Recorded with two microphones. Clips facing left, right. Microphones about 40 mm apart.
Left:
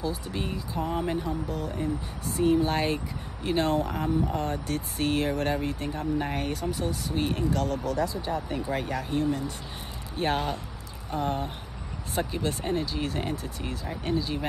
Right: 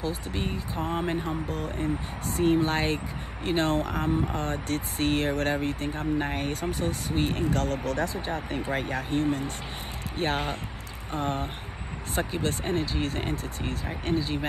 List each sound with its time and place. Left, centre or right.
0.0 s speech: right